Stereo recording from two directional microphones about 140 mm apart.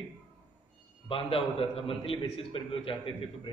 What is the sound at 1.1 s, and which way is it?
A man's voice, 40° left (ahead or behind).